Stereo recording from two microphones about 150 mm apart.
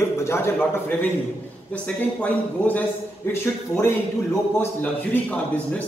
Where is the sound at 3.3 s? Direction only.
15° left (ahead or behind).